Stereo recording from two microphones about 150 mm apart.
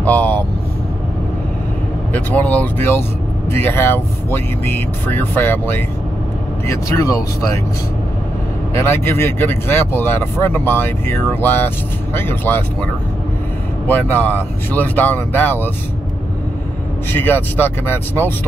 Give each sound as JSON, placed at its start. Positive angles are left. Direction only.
{"t": 0.0, "sound": "speech", "side_deg": 10}
{"t": 2.1, "sound": "speech", "side_deg": 10}
{"t": 8.8, "sound": "speech", "side_deg": 15}
{"t": 13.8, "sound": "speech", "side_deg": 10}
{"t": 17.1, "sound": "speech", "side_deg": 15}